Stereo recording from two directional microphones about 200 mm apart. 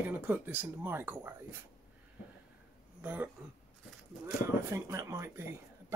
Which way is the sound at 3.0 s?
5° right (ahead or behind).